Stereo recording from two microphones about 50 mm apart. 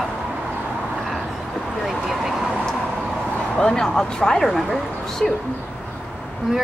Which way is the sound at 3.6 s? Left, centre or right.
Centre.